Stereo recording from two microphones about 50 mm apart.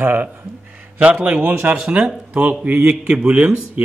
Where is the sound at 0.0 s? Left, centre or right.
Right.